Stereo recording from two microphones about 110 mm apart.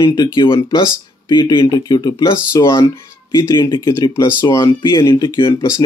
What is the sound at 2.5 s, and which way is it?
Speech, 25° left (ahead or behind).